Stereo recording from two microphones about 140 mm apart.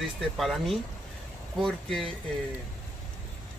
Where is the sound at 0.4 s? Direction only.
Centre (ahead or behind).